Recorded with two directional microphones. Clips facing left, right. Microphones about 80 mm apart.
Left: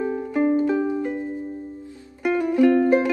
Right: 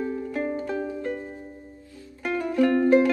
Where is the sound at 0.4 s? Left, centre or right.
Centre.